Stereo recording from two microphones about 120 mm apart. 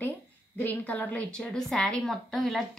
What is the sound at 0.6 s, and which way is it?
A woman's voice, 15° left (ahead or behind).